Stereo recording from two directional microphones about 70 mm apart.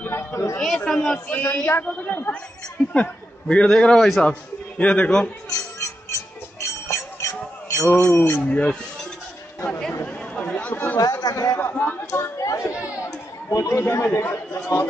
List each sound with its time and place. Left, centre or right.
0.0 s a woman's voice: left
0.8 s a man's voice: centre
1.3 s speech: left
2.9 s a man's voice: centre
5.5 s a sound: left
6.6 s music: left
7.8 s speech: left
8.5 s a man's voice: centre
9.7 s chatter: centre
11.0 s speech: left
11.7 s speech: left
12.1 s speech: left